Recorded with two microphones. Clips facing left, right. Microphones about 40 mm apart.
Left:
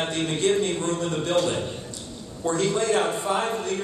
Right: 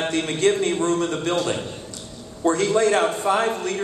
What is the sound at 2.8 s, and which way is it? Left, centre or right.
Speech, right.